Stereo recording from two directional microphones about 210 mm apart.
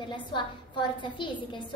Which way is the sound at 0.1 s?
20° left (ahead or behind).